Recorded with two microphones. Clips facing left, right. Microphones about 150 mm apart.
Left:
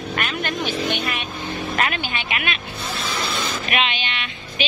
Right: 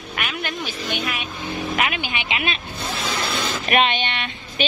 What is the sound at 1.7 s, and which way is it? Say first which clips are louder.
Speech: left 2 dB; 10° right (ahead or behind).